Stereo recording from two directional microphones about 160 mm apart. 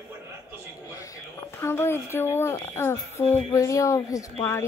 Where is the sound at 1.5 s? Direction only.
15° left (ahead or behind).